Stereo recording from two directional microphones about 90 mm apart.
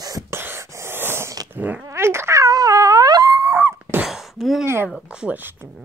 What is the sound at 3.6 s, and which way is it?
Dog, 25° right (ahead or behind).